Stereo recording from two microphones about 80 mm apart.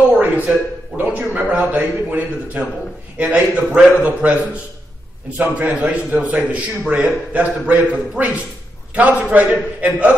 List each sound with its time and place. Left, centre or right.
0.1 s a man's voice: centre